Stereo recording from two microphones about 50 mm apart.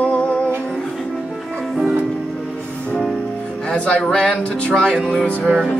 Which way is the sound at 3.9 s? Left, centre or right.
Centre.